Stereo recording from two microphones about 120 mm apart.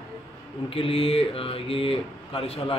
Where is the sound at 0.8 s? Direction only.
50° left (ahead or behind).